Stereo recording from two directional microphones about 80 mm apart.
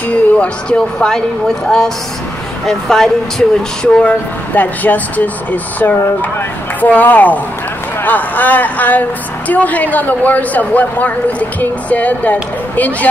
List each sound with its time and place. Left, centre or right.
0.4 s speech: centre